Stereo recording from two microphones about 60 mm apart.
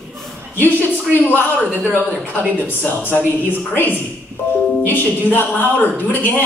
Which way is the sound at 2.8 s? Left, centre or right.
Left.